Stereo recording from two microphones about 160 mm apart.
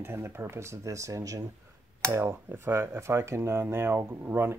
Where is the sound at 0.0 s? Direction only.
15° right (ahead or behind).